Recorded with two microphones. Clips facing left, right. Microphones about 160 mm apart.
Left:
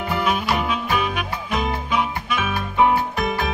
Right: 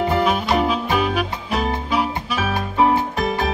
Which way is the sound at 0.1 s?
35° right (ahead or behind).